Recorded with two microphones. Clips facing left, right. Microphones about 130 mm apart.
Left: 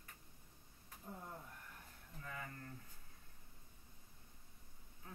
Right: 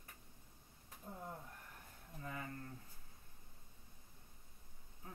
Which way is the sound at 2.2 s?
30° right (ahead or behind).